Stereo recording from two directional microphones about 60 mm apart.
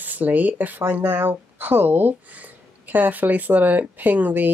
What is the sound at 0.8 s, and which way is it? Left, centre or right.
Speech, right.